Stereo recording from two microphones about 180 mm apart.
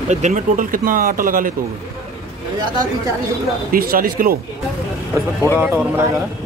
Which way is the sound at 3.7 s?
55° right (ahead or behind).